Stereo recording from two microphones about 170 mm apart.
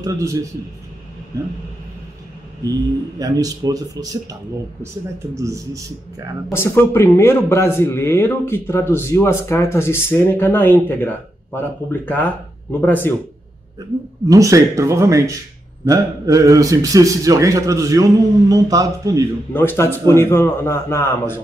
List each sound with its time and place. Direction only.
0.0 s a man's voice: 20° right (ahead or behind)
3.2 s a man's voice: 20° right (ahead or behind)
6.5 s a man's voice: 15° left (ahead or behind)
14.2 s a man's voice: 20° right (ahead or behind)
19.5 s a man's voice: 15° left (ahead or behind)